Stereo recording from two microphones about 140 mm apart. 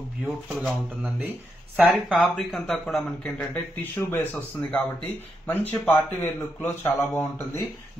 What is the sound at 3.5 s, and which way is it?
Speech, 15° left (ahead or behind).